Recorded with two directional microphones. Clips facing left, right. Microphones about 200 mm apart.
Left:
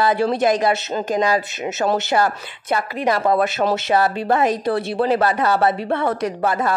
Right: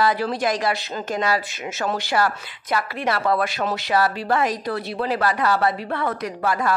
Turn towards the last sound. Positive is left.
turn(degrees=25)  # may be behind; listen again after turning